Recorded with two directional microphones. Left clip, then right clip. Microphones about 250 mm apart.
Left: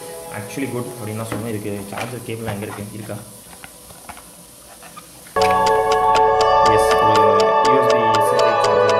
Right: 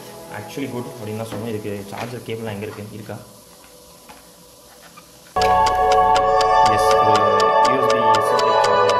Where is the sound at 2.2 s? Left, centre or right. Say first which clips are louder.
Even; centre.